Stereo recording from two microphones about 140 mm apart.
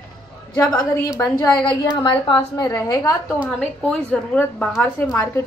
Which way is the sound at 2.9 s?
25° left (ahead or behind).